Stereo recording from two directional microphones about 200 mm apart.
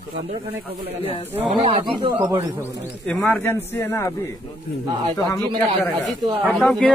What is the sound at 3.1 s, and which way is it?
A man's voice, 5° left (ahead or behind).